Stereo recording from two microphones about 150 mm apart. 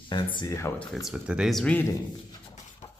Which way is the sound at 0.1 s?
30° left (ahead or behind).